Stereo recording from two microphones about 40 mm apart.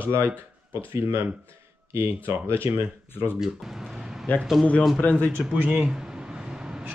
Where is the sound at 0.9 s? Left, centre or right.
Right.